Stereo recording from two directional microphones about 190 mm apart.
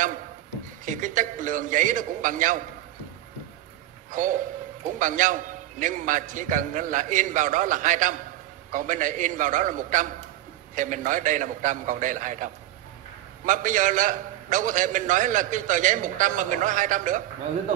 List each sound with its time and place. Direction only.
0.8 s a man's voice: 45° right (ahead or behind)
4.1 s a man's voice: 45° right (ahead or behind)
13.5 s a man's voice: 45° right (ahead or behind)